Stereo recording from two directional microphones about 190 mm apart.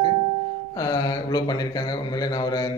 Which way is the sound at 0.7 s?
20° left (ahead or behind).